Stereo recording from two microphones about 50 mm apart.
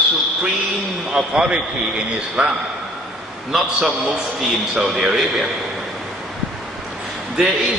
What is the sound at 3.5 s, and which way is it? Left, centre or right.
Speech, centre.